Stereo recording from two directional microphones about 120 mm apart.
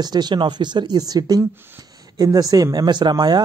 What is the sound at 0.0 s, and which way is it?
Speech, 35° right (ahead or behind).